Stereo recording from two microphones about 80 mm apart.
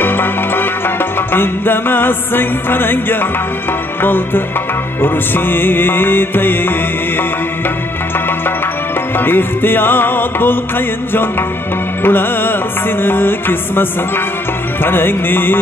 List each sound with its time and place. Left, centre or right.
0.0 s music: left
9.2 s music: left
12.0 s music: left